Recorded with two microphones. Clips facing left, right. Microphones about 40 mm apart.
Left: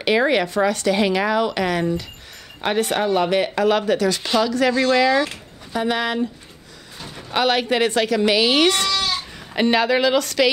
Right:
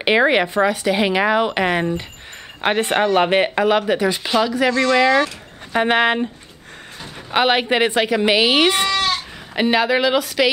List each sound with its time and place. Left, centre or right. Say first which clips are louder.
0.0 s a woman's voice: right 2 dB; right
3.6 s speech: right 1 dB; centre
5.2 s speech: right 2 dB; right
7.0 s a woman's voice: right 3 dB; right
8.9 s goat: right 3 dB; right
9.6 s speech: right 1 dB; centre